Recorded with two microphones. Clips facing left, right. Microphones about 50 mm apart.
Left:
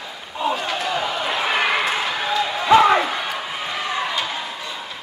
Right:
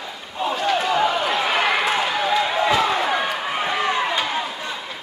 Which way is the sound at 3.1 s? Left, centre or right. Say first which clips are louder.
Right 3 dB; centre.